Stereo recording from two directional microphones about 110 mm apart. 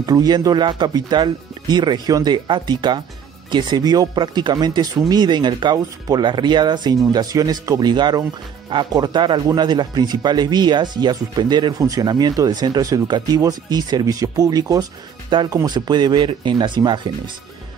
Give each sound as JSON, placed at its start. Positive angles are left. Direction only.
{"t": 0.0, "sound": "speech", "side_deg": -35}